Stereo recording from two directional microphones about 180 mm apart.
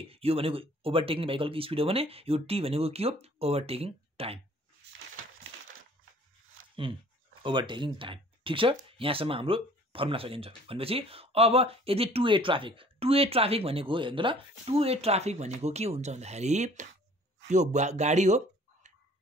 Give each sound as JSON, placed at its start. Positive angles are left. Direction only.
{"t": 0.0, "sound": "speech", "side_deg": -35}
{"t": 6.7, "sound": "a sound", "side_deg": -30}
{"t": 7.4, "sound": "speech", "side_deg": -25}